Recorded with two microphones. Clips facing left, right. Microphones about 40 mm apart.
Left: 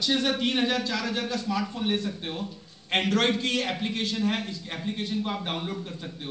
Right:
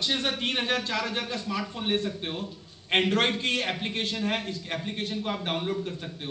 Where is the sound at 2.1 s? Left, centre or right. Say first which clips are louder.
Even; centre; by 5.1 s right.